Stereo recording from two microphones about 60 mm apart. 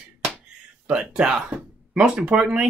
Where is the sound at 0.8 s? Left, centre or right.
Centre.